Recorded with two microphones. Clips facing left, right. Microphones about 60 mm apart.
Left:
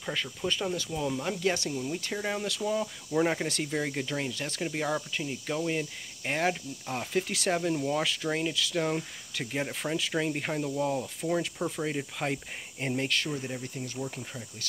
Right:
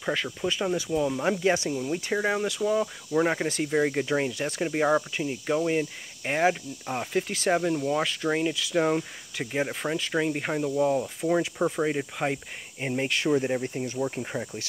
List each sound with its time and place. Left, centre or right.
0.4 s speech: centre
5.1 s speech: centre
8.7 s speech: centre
13.3 s speech: right